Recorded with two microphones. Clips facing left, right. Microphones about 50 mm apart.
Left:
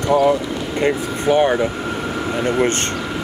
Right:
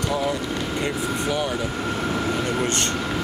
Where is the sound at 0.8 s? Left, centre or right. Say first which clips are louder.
Left 10 dB; left.